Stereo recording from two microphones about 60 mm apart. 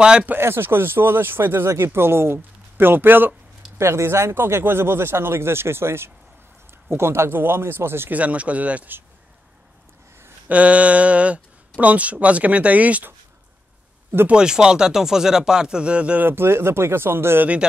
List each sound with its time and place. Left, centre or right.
0.0 s speech: centre
0.4 s speech: right
3.7 s speech: right
8.1 s speech: right
10.5 s speech: right
14.3 s speech: centre
16.2 s speech: right